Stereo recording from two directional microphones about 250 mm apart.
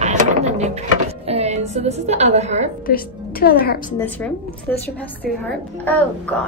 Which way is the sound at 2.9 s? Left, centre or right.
Left.